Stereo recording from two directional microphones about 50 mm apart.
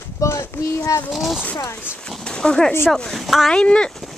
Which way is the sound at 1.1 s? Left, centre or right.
Centre.